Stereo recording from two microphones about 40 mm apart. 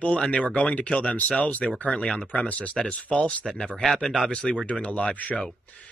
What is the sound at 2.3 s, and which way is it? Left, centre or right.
Speech, left.